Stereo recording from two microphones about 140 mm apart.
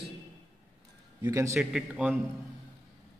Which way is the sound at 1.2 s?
25° right (ahead or behind).